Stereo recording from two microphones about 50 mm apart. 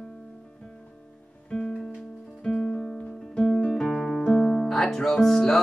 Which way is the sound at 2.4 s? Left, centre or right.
Centre.